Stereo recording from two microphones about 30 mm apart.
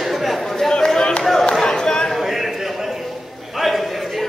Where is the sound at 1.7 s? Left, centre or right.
Left.